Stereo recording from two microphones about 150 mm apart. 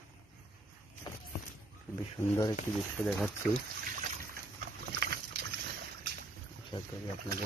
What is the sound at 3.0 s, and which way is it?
Speech, 5° left (ahead or behind).